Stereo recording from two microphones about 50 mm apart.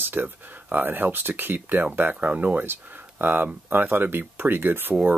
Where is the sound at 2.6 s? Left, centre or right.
Right.